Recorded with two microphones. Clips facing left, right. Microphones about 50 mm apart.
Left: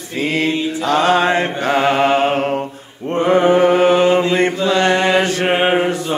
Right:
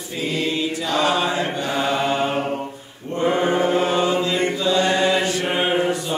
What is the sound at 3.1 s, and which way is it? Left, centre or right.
Chant, left.